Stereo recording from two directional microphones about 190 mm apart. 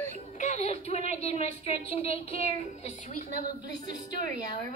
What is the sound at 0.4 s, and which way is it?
A woman's voice, 35° left (ahead or behind).